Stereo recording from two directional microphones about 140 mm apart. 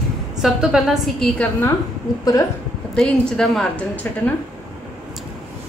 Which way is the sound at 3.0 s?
5° left (ahead or behind).